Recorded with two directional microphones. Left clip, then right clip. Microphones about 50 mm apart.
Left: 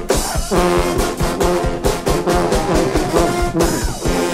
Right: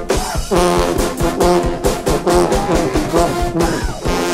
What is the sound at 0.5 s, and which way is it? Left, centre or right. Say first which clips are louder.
Music: right 2 dB; right.